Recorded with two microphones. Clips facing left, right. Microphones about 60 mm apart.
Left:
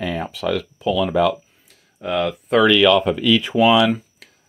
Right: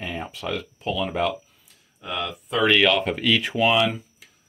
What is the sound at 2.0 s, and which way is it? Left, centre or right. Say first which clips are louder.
Speech: left 8 dB; left.